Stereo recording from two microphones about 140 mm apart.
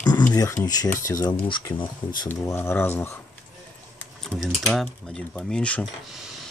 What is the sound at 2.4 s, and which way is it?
Speech, 20° left (ahead or behind).